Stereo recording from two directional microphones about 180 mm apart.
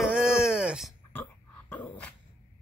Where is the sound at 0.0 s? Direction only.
5° right (ahead or behind).